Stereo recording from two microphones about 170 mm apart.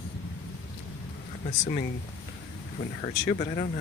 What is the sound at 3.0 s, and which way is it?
Speech, 40° left (ahead or behind).